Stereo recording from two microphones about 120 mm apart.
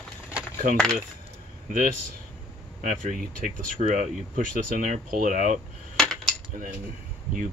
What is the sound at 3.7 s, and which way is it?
Speech, 85° right.